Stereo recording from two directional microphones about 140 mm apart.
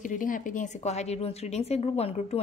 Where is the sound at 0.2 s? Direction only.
75° left (ahead or behind).